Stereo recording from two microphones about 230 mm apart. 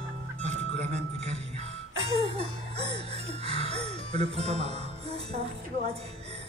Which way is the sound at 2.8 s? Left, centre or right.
Right.